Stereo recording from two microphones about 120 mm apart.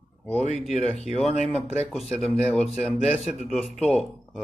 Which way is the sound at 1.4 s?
Centre (ahead or behind).